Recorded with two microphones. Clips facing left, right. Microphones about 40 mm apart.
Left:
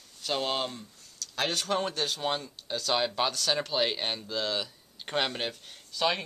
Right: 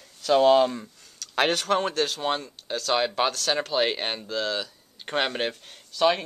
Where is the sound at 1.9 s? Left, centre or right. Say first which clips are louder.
Right 5 dB; centre.